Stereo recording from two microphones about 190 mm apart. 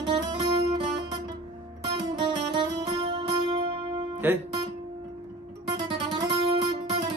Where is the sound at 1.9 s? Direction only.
25° right (ahead or behind).